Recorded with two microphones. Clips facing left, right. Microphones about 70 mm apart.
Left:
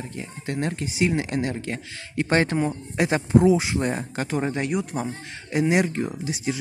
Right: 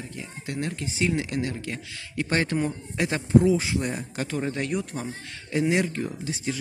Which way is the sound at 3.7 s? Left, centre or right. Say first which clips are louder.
Left 3 dB; left.